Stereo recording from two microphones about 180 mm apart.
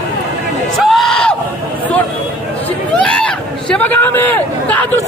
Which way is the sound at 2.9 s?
5° left (ahead or behind).